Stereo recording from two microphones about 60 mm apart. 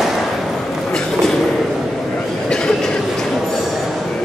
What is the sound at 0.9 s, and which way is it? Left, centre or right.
Train, centre.